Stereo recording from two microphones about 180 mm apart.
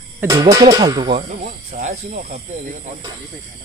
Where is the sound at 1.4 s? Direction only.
45° right (ahead or behind).